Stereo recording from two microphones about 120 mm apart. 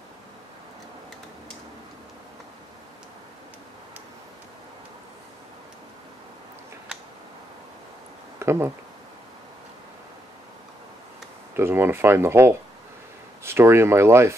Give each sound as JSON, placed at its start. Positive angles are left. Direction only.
{"t": 8.4, "sound": "speech", "side_deg": -20}
{"t": 11.5, "sound": "speech", "side_deg": -20}